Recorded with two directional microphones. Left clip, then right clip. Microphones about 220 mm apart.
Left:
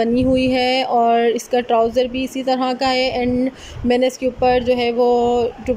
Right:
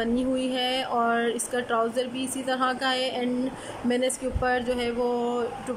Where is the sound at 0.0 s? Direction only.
20° left (ahead or behind).